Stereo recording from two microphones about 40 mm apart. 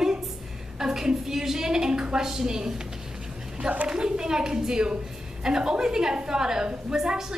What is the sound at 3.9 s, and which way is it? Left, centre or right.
A woman's voice, centre.